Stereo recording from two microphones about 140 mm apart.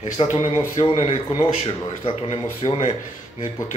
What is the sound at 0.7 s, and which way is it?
Speech, 50° left (ahead or behind).